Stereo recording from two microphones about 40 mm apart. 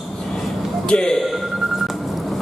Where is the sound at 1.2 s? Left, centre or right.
Centre.